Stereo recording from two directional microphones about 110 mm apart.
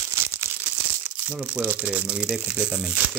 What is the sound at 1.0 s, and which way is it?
Speech, 15° right (ahead or behind).